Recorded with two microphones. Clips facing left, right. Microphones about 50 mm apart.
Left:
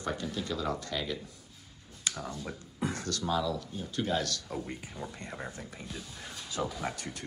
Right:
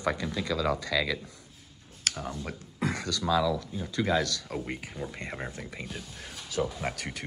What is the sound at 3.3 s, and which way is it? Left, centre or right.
Speech, right.